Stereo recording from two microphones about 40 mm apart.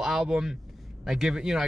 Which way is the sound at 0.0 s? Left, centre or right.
Centre.